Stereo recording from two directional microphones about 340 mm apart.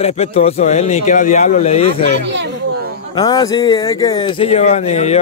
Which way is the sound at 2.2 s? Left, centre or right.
Right.